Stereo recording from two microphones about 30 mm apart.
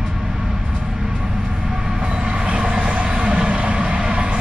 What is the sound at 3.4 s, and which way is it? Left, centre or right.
Vehicle, right.